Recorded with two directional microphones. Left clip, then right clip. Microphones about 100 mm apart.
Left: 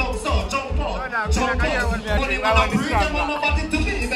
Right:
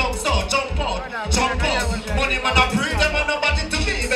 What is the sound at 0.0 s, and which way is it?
Music, 20° right (ahead or behind).